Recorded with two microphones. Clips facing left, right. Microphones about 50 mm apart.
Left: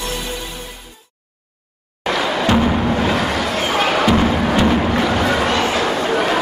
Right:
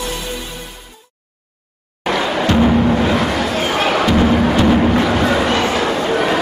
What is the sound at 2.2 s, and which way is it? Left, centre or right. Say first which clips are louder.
Music: right 1 dB; right.